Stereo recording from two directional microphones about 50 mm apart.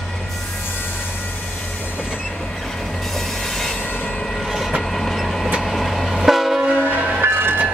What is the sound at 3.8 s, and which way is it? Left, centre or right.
Train, left.